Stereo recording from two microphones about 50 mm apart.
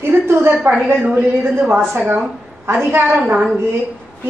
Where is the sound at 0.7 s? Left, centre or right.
Right.